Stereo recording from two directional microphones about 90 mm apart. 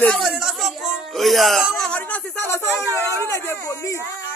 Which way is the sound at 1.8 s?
15° left (ahead or behind).